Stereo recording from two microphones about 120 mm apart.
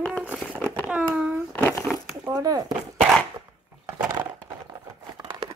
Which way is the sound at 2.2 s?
30° right (ahead or behind).